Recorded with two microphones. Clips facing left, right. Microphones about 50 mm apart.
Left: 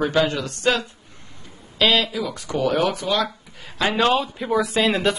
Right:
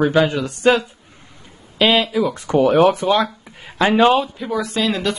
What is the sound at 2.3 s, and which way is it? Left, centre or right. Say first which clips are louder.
Speech: right 7 dB; right.